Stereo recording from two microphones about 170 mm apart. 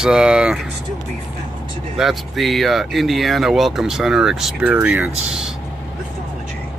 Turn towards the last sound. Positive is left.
turn(degrees=-5)  # may be behind; listen again after turning